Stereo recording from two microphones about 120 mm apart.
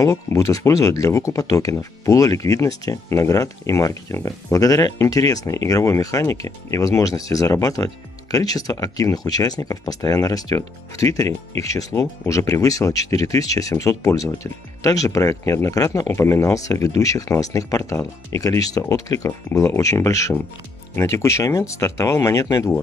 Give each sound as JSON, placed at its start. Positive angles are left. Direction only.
{"t": 0.0, "sound": "speech", "side_deg": 25}